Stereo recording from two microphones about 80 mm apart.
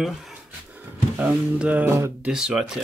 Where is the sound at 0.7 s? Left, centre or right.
Centre.